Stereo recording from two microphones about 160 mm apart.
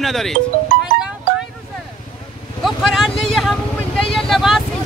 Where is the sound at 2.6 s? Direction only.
Centre (ahead or behind).